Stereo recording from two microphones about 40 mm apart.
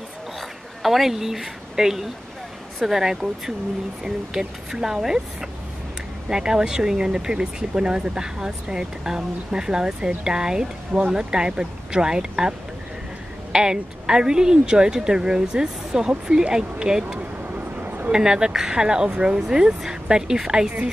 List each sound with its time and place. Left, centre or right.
0.4 s a woman's voice: centre
17.6 s a sound: right
18.1 s speech: centre